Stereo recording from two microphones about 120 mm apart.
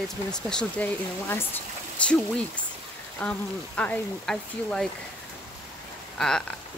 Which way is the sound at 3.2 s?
10° left (ahead or behind).